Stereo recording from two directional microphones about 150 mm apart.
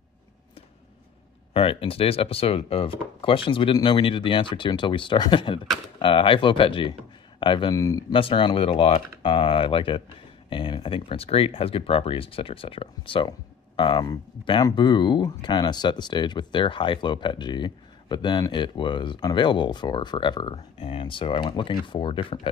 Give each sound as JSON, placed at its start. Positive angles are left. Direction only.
{"t": 1.5, "sound": "speech", "side_deg": 40}